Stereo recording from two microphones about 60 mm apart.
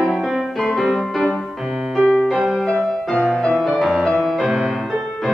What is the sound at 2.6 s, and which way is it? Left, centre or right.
Music, centre.